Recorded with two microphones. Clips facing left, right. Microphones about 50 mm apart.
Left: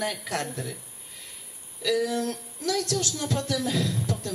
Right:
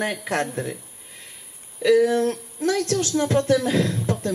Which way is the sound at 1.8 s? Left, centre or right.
Right.